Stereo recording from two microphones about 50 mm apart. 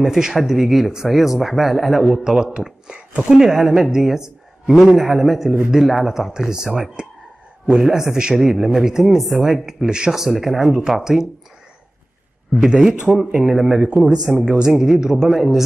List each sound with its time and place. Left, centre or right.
0.0 s speech: centre
3.3 s a woman's voice: centre
12.5 s a woman's voice: centre
13.3 s a woman's voice: centre